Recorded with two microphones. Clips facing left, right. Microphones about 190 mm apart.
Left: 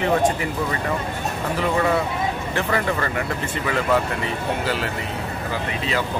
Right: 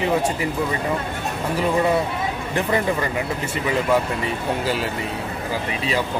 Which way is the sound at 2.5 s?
15° right (ahead or behind).